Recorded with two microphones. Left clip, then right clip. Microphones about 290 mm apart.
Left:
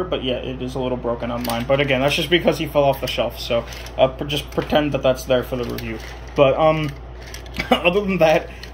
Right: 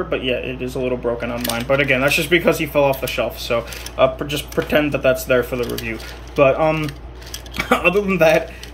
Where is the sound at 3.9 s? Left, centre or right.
Right.